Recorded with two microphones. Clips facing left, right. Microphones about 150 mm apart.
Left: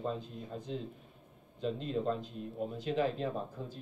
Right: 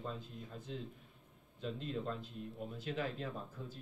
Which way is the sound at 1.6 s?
25° left (ahead or behind).